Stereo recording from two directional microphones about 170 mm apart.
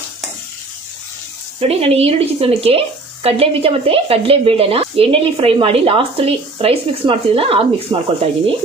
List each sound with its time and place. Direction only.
1.6 s speech: 35° right (ahead or behind)